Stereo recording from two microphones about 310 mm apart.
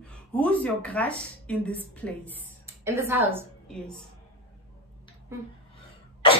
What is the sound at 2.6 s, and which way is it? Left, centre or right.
Speech, centre.